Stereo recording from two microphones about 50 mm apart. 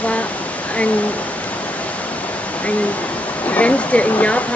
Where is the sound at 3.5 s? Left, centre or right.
Left.